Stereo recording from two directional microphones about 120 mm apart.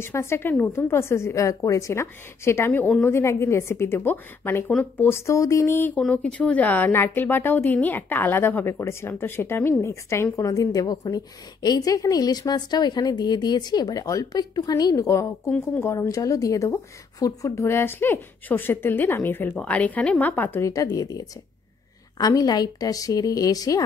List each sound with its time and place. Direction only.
0.0 s a woman's voice: 20° left (ahead or behind)
5.9 s a woman's voice: 5° left (ahead or behind); by 15.5 s 25° left (ahead or behind)
15.5 s a woman's voice: 10° left (ahead or behind)
15.9 s a woman's voice: 25° left (ahead or behind)